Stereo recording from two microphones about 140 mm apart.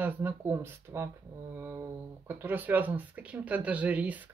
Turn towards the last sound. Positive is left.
turn(degrees=-10)  # may be behind; listen again after turning